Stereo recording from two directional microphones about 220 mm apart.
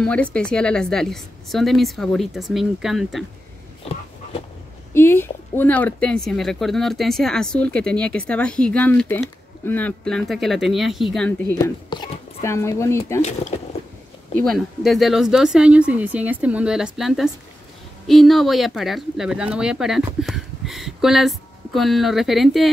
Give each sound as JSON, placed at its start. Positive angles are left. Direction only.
{"t": 0.0, "sound": "speech", "side_deg": 5}
{"t": 4.9, "sound": "speech", "side_deg": 10}
{"t": 13.2, "sound": "speech", "side_deg": 30}
{"t": 14.3, "sound": "speech", "side_deg": 0}